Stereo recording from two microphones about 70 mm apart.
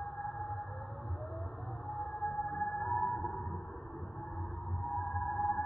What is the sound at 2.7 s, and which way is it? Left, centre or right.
Music, left.